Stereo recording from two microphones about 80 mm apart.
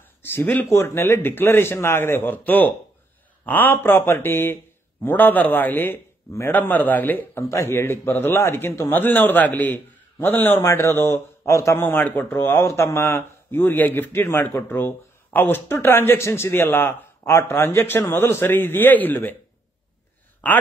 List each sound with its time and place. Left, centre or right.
0.2 s a man's voice: left
7.4 s a man's voice: left
11.8 s a man's voice: left
20.4 s speech: centre